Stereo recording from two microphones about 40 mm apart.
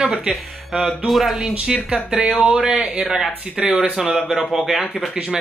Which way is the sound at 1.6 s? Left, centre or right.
Centre.